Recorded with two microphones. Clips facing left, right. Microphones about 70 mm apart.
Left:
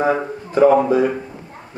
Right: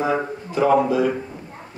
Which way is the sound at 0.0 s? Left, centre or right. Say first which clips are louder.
Left 3 dB; left.